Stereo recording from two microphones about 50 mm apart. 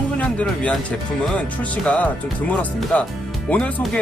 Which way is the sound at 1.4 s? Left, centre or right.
Left.